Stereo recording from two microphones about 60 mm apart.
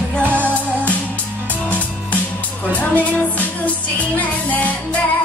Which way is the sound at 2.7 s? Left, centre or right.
Left.